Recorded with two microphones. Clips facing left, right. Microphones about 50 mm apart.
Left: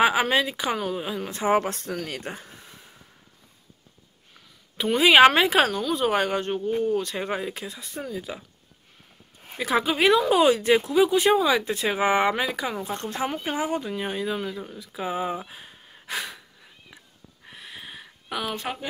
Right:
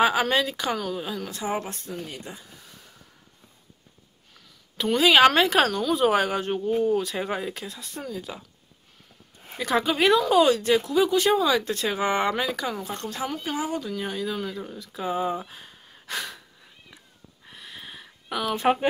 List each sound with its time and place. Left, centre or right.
0.0 s speech: centre
1.5 s speech: left
2.4 s a sound: left
4.3 s a sound: centre
5.0 s a woman's voice: centre
9.6 s a woman's voice: centre
10.2 s speech: centre
14.6 s speech: centre
17.5 s a sound: centre
18.6 s speech: right